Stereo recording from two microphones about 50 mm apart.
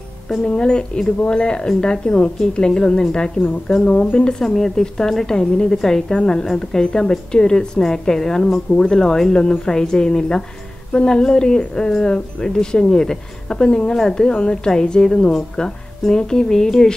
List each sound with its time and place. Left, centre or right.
0.6 s a woman's voice: centre
3.9 s speech: left
4.2 s a woman's voice: centre